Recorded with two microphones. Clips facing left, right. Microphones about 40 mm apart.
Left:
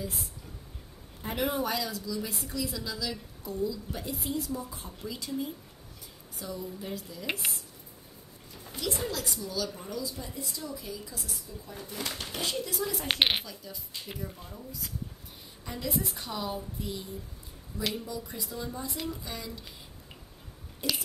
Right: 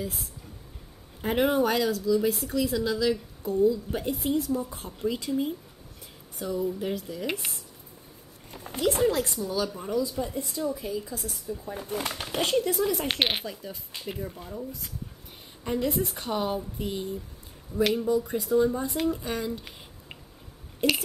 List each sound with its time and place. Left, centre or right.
1.5 s a woman's voice: right
6.4 s a woman's voice: right
8.6 s a woman's voice: right
13.1 s speech: centre
13.5 s a woman's voice: right
15.6 s a woman's voice: right
16.7 s a sound: right
17.7 s a woman's voice: right
20.8 s a woman's voice: right